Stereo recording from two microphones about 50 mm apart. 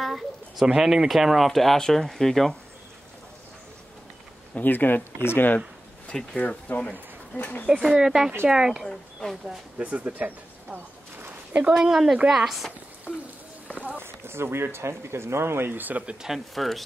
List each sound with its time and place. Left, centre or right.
0.0 s speech: centre
0.7 s speech: centre
4.6 s speech: left
6.1 s speech: centre
6.7 s speech: left
7.8 s speech: centre
8.8 s speech: centre
9.8 s a sound: right
11.7 s speech: centre
13.9 s speech: right
16.5 s speech: centre